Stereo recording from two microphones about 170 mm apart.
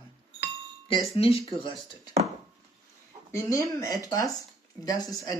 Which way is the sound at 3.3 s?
20° left (ahead or behind).